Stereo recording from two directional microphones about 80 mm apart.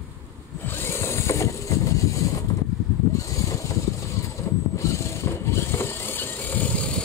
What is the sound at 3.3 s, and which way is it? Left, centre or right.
Vehicle, left.